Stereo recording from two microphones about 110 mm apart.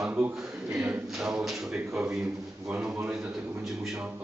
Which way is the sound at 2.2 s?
15° right (ahead or behind).